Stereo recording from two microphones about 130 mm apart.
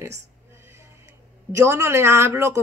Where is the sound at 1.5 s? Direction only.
20° right (ahead or behind).